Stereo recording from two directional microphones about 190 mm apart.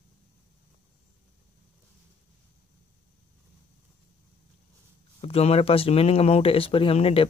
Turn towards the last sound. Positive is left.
turn(degrees=30)  # may be behind; listen again after turning